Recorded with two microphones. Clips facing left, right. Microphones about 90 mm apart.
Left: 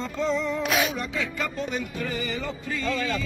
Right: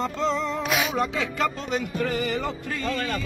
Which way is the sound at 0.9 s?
75° right (ahead or behind).